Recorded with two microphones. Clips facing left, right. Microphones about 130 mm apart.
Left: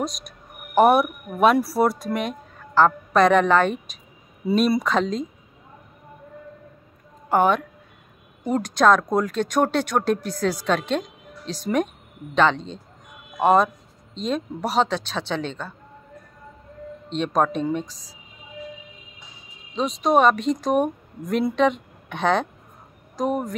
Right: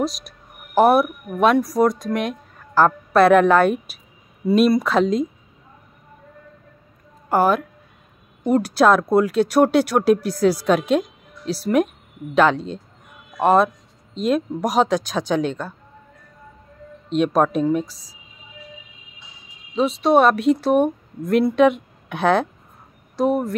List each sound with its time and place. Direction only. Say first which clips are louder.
0.0 s a woman's voice: right 4 dB; centre (ahead or behind)
7.2 s a woman's voice: right 1 dB; 5° right (ahead or behind)
17.1 s speech: right 4 dB; 10° right (ahead or behind)
19.7 s a woman's voice: right 3 dB; 5° right (ahead or behind)